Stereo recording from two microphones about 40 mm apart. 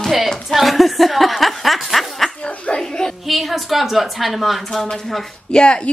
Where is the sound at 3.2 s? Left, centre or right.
Centre.